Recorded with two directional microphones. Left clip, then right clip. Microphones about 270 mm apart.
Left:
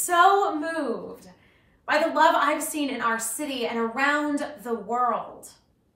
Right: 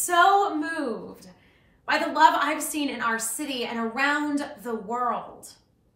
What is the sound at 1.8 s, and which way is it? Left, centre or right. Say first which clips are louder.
A woman's voice: right 1 dB; centre.